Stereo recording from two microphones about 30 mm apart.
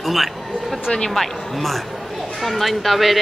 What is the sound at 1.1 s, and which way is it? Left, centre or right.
Speech, centre.